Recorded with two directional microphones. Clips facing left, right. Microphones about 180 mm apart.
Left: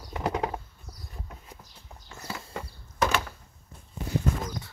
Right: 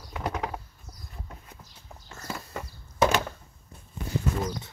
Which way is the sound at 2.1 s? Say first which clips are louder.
Right 1 dB; 10° left (ahead or behind).